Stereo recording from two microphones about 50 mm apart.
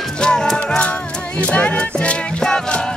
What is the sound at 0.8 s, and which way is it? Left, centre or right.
Music, left.